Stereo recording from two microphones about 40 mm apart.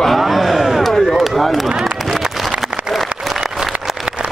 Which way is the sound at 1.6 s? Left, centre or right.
Centre.